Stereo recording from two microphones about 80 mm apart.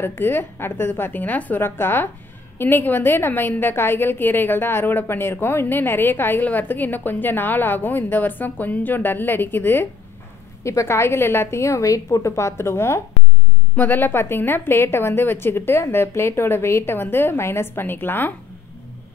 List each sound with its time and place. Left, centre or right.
0.0 s a woman's voice: left
10.6 s a woman's voice: left
13.7 s a woman's voice: left